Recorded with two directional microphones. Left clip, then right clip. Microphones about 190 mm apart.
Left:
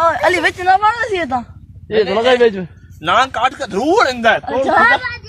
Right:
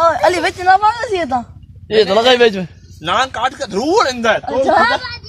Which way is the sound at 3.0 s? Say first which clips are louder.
Left 2 dB; 15° left (ahead or behind).